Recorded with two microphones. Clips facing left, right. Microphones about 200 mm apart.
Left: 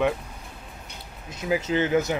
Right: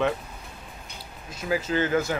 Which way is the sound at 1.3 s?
20° left (ahead or behind).